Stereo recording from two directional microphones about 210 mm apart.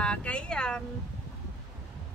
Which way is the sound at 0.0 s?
5° left (ahead or behind).